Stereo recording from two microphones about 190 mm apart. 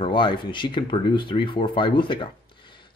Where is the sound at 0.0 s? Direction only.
25° left (ahead or behind).